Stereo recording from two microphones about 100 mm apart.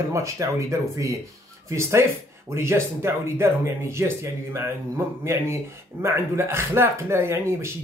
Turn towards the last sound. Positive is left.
turn(degrees=-25)  # may be behind; listen again after turning